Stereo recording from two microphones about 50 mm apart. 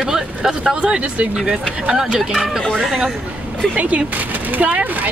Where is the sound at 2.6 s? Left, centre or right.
Centre.